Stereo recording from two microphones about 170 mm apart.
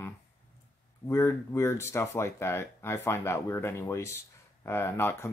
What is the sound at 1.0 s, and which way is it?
Speech, 15° left (ahead or behind).